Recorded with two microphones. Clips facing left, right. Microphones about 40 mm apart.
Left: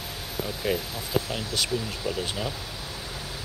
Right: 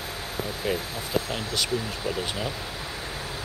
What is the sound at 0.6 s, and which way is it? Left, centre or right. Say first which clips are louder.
Speech: left 1 dB; centre.